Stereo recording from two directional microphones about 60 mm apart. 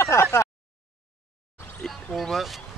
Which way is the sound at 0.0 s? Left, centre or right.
Left.